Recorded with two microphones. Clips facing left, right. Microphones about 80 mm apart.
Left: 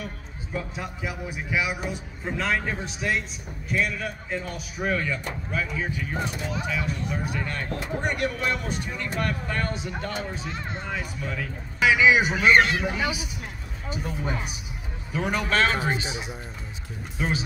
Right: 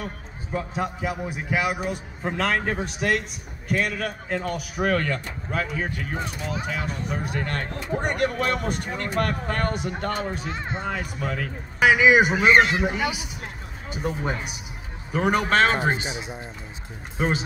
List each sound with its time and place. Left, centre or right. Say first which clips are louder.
0.0 s a man's voice: right 2 dB; right
10.5 s a man's voice: right 3 dB; right
10.9 s speech: right 3 dB; right
12.3 s speech: right 2 dB; centre
14.0 s a man's voice: right 5 dB; right